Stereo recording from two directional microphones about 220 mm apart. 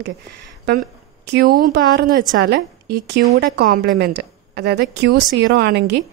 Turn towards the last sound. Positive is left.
turn(degrees=-50)  # may be behind; listen again after turning